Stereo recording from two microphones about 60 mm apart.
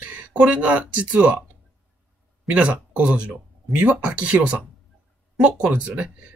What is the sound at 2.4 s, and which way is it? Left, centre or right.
Speech, right.